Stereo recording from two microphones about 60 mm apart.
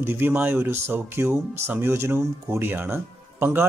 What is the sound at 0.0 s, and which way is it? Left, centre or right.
Speech, right.